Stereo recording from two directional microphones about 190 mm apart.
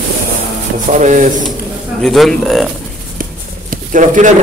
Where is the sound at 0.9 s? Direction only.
40° right (ahead or behind).